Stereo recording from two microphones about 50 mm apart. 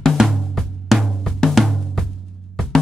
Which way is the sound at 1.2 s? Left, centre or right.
Centre.